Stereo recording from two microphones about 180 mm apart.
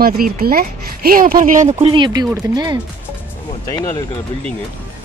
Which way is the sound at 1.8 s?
25° right (ahead or behind).